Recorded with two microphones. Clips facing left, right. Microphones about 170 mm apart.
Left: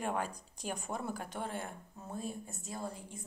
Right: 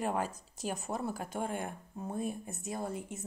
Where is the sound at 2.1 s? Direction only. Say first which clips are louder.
Right 4 dB; 55° right (ahead or behind).